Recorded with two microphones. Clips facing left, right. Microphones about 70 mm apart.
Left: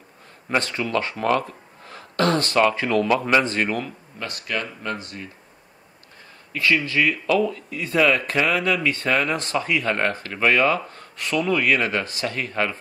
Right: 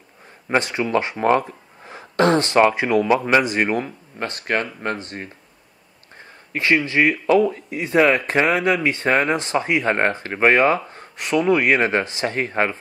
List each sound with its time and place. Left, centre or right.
0.5 s speech: centre; by 5.3 s right
6.5 s speech: right